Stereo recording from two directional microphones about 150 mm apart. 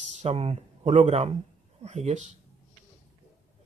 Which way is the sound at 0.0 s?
50° right (ahead or behind).